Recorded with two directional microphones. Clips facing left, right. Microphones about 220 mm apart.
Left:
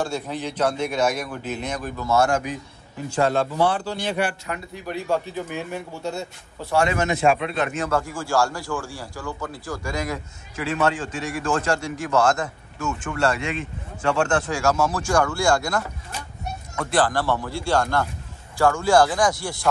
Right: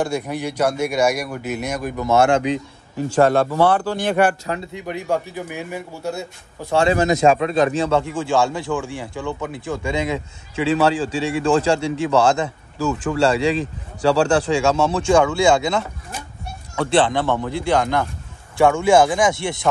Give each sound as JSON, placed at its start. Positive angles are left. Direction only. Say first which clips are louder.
{"t": 0.0, "sound": "speech", "louder": "right 4 dB", "side_deg": -15}
{"t": 2.2, "sound": "a man's voice", "louder": "right 6 dB", "side_deg": -90}
{"t": 3.2, "sound": "speech", "louder": "right 5 dB", "side_deg": -50}
{"t": 4.5, "sound": "speech", "louder": "right 4 dB", "side_deg": -25}
{"t": 6.7, "sound": "speech", "louder": "right 5 dB", "side_deg": -30}
{"t": 16.9, "sound": "speech", "louder": "right 3 dB", "side_deg": -25}